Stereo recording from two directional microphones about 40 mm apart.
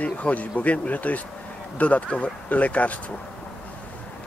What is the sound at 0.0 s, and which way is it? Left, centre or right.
Speech, left.